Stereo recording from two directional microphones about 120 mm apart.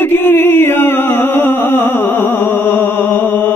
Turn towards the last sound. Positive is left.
turn(degrees=15)  # may be behind; listen again after turning